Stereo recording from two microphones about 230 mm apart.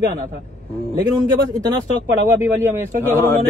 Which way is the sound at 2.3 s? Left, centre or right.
Centre.